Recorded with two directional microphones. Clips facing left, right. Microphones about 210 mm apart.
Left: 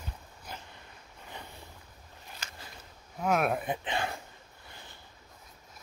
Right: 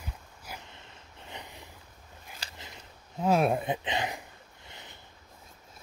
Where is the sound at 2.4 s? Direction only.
35° right (ahead or behind).